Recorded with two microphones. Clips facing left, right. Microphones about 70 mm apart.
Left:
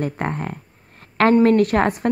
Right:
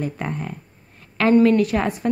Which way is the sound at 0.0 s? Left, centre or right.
Left.